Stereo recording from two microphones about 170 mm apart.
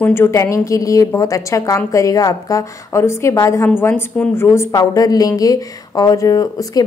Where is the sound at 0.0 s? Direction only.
15° left (ahead or behind).